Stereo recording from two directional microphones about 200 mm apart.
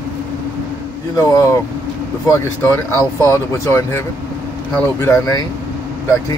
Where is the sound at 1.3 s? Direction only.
15° left (ahead or behind).